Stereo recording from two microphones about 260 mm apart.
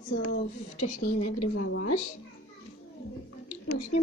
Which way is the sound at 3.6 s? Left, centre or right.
Left.